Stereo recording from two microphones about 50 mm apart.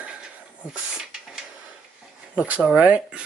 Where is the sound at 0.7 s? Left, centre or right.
Centre.